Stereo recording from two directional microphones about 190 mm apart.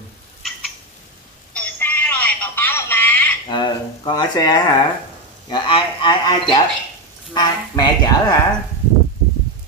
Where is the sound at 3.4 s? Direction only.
25° left (ahead or behind).